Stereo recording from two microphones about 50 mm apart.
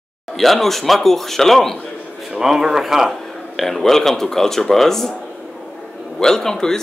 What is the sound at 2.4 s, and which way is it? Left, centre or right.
Speech, centre.